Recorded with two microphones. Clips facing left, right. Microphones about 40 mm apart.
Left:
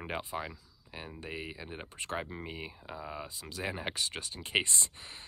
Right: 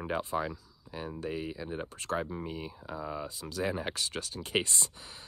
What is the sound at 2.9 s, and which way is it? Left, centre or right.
Speech, centre.